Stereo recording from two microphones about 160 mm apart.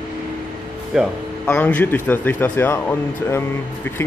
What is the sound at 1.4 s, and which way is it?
Speech, 10° left (ahead or behind).